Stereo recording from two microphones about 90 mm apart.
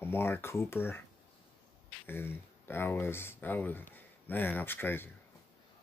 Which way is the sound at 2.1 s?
25° left (ahead or behind).